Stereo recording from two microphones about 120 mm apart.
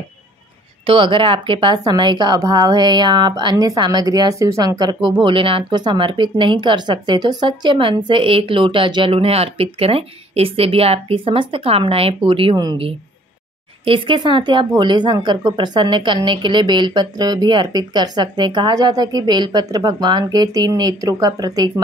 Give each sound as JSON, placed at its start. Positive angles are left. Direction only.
{"t": 0.8, "sound": "a woman's voice", "side_deg": -45}
{"t": 5.2, "sound": "speech", "side_deg": -45}
{"t": 13.8, "sound": "a woman's voice", "side_deg": -45}